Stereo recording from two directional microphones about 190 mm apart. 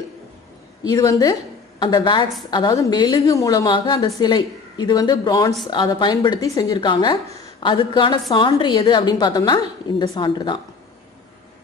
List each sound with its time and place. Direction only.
0.8 s a woman's voice: 20° left (ahead or behind)